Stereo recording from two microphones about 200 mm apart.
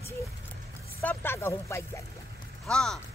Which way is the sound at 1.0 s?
10° left (ahead or behind).